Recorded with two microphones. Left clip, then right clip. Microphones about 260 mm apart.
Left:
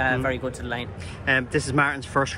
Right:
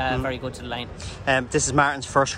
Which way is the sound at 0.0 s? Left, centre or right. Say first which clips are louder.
Left 2 dB; centre.